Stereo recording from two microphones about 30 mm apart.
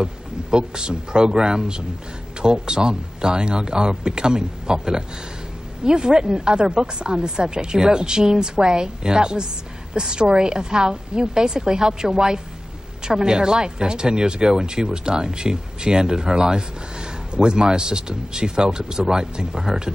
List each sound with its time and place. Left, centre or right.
0.0 s speech: right